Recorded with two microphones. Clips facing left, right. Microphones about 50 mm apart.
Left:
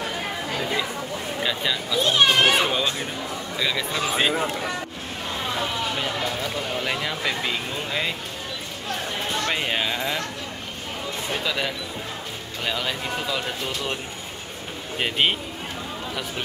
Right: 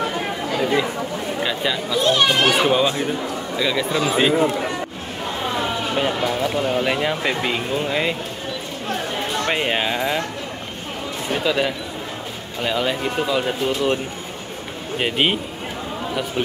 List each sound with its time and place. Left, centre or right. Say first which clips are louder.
0.6 s speech: right 8 dB; centre
2.0 s a child's voice: right 1 dB; centre
2.6 s speech: right 6 dB; centre
5.9 s speech: right 6 dB; centre
9.5 s speech: right 6 dB; centre
11.3 s speech: right 7 dB; centre
15.0 s speech: right 3 dB; centre